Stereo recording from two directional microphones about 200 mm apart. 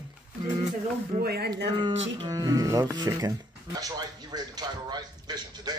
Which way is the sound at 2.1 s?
20° right (ahead or behind).